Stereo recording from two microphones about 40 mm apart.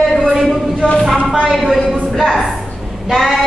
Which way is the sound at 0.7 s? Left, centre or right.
Left.